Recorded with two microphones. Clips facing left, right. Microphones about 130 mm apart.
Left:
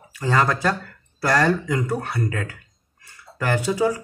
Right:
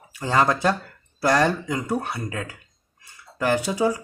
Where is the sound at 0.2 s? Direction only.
20° right (ahead or behind).